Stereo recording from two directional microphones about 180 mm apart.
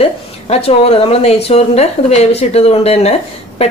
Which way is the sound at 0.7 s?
35° left (ahead or behind).